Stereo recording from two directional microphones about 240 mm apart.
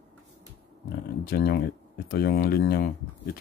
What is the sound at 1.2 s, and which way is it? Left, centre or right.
Speech, left.